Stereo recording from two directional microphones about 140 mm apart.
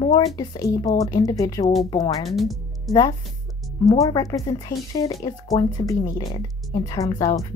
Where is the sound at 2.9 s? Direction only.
25° left (ahead or behind).